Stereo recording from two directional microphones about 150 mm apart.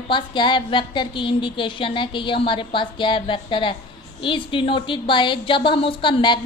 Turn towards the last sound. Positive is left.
turn(degrees=30)  # may be behind; listen again after turning